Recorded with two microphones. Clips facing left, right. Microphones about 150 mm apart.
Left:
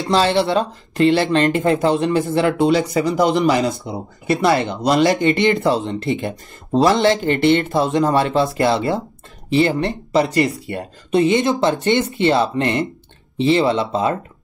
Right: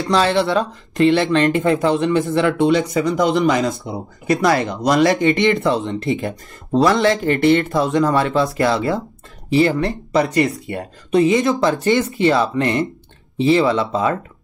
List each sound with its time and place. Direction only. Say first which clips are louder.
0.0 s speech: even; 30° left (ahead or behind)
3.7 s speech: even; centre (ahead or behind)
4.3 s speech: even; 30° left (ahead or behind)